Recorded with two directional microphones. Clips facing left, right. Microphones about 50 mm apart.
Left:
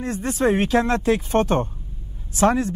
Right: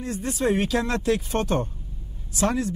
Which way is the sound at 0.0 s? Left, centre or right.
Left.